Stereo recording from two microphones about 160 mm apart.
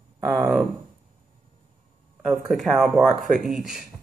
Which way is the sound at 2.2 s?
Centre (ahead or behind).